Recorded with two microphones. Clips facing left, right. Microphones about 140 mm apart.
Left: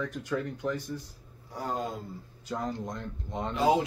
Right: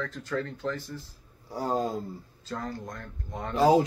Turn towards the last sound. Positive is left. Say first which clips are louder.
# left 2 dB
turn(degrees=20)  # may be behind; listen again after turning